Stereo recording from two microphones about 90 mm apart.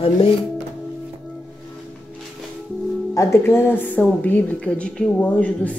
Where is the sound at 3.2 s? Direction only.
30° left (ahead or behind); by 5.7 s 15° left (ahead or behind).